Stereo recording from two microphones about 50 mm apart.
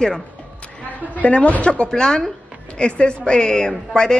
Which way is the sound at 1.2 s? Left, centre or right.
Left.